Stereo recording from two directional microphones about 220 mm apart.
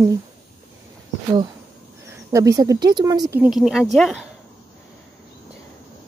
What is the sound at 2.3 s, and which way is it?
Speech, 15° right (ahead or behind).